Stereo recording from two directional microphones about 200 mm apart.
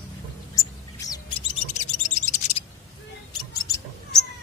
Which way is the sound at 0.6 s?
15° left (ahead or behind).